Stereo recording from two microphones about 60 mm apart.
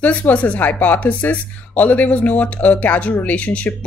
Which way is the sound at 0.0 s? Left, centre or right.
Left.